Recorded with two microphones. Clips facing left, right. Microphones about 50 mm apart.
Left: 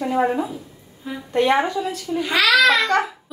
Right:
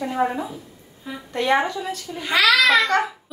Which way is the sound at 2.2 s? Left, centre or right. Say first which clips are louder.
Left 1 dB; centre.